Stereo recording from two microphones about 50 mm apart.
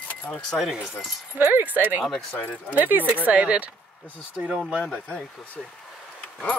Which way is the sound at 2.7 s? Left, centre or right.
Right.